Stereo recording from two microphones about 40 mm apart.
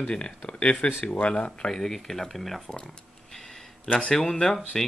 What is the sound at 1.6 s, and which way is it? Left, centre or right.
Speech, centre.